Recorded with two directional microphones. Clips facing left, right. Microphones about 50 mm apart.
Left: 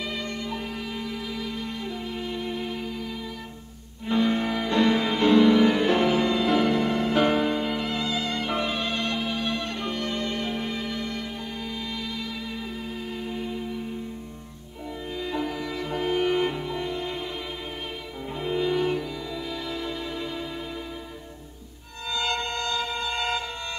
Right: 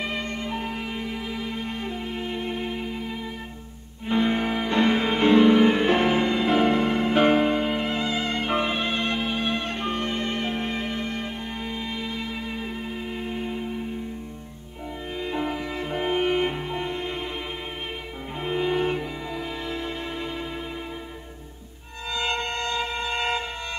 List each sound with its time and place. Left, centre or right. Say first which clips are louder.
0.0 s music: right 2 dB; right
4.1 s music: right 1 dB; right
15.2 s music: right 2 dB; right
18.3 s music: even; right
22.0 s music: right 1 dB; right